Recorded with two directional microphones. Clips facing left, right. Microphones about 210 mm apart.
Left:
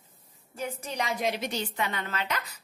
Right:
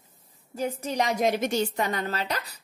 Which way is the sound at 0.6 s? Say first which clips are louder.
Right 6 dB; 40° right (ahead or behind).